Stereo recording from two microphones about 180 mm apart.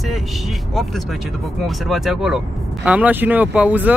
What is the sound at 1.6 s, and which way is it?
Speech, centre (ahead or behind).